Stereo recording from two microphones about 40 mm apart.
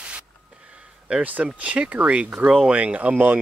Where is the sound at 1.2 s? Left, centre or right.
Right.